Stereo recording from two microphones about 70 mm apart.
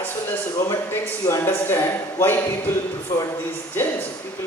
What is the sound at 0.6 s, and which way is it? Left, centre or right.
A man's voice, left.